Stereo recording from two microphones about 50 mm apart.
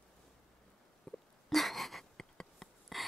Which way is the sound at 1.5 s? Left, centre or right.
Centre.